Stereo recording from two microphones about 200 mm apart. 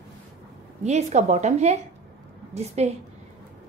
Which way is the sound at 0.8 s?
35° right (ahead or behind).